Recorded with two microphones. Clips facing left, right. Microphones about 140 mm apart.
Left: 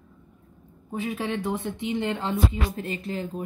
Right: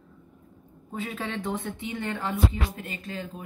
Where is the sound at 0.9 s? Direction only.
15° left (ahead or behind).